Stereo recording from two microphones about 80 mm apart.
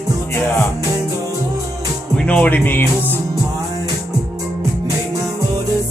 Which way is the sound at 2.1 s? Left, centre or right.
Centre.